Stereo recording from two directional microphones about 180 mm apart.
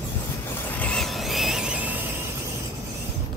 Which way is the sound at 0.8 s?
5° left (ahead or behind).